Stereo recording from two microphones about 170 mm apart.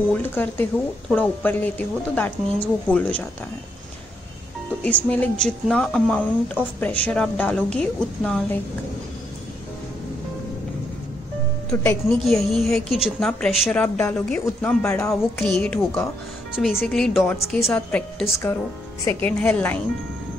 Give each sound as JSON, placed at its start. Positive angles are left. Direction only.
{"t": 0.1, "sound": "a woman's voice", "side_deg": 10}
{"t": 4.8, "sound": "speech", "side_deg": 10}
{"t": 11.7, "sound": "speech", "side_deg": 20}
{"t": 12.3, "sound": "a woman's voice", "side_deg": 0}
{"t": 15.4, "sound": "a woman's voice", "side_deg": 5}